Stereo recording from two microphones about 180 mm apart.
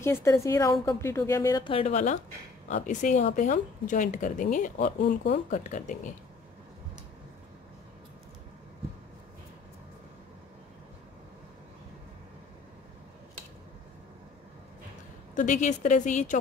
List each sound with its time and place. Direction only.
0.0 s a woman's voice: 15° left (ahead or behind)
1.7 s speech: 35° left (ahead or behind)
5.0 s speech: 70° left (ahead or behind)
5.5 s speech: 45° left (ahead or behind)
15.3 s speech: 45° left (ahead or behind)